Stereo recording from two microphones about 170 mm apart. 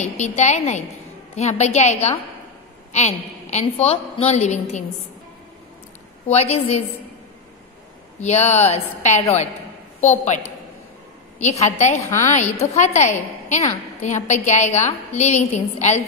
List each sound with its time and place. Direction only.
0.0 s a woman's voice: 45° left (ahead or behind)
6.2 s a woman's voice: 40° left (ahead or behind)
8.2 s a woman's voice: 40° left (ahead or behind)